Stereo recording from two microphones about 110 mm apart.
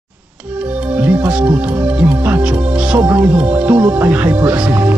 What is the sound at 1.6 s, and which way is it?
Speech, 15° right (ahead or behind).